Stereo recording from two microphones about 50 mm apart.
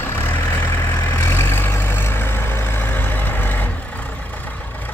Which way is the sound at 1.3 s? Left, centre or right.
Left.